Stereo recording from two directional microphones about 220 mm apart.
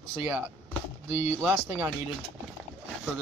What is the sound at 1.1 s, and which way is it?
Speech, 10° right (ahead or behind).